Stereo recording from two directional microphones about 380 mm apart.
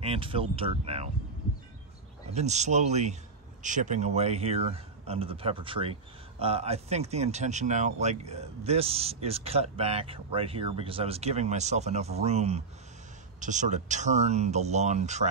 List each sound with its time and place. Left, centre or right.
0.0 s speech: centre
2.3 s speech: centre